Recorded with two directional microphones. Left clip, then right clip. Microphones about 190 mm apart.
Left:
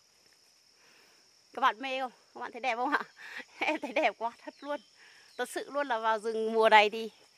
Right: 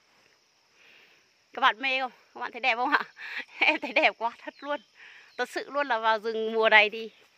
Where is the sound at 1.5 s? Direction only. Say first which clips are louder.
Right 5 dB; 10° right (ahead or behind).